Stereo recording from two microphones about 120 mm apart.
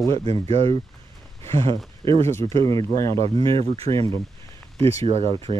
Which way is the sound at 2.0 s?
45° right (ahead or behind).